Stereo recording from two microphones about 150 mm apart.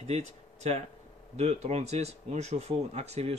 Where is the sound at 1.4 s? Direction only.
45° right (ahead or behind).